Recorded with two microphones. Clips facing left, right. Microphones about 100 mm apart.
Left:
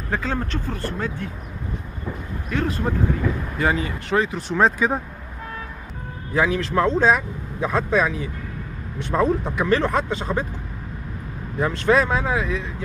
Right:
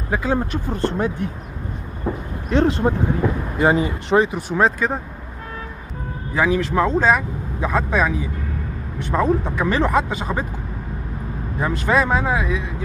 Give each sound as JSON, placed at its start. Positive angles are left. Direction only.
{"t": 0.1, "sound": "speech", "side_deg": -15}
{"t": 2.5, "sound": "speech", "side_deg": -30}
{"t": 4.4, "sound": "speech", "side_deg": -5}
{"t": 6.3, "sound": "speech", "side_deg": -5}
{"t": 11.6, "sound": "speech", "side_deg": -5}